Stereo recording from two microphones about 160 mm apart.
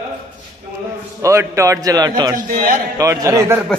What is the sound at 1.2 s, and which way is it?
A man's voice, 20° right (ahead or behind).